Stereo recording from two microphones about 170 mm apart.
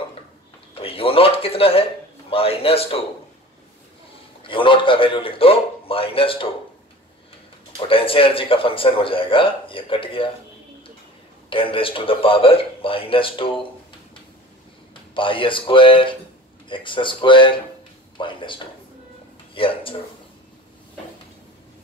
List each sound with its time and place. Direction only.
0.7 s a man's voice: 35° left (ahead or behind)
4.4 s speech: 30° left (ahead or behind)
7.9 s speech: 30° left (ahead or behind)
11.5 s speech: 30° left (ahead or behind)
15.1 s speech: 30° left (ahead or behind)